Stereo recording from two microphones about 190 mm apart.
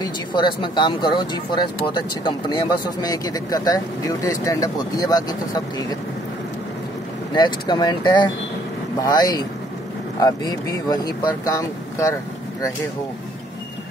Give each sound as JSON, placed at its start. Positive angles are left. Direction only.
{"t": 0.0, "sound": "speech", "side_deg": 25}
{"t": 7.3, "sound": "speech", "side_deg": 25}